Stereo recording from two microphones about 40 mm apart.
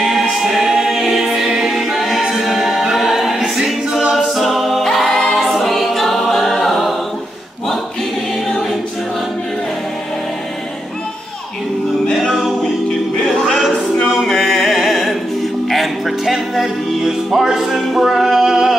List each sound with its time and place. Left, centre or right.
0.0 s music: centre
2.2 s a capella: centre
5.5 s choir: centre
12.2 s music: centre
13.7 s a capella: centre
14.1 s music: centre